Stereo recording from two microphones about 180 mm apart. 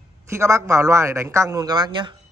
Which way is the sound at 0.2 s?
15° right (ahead or behind).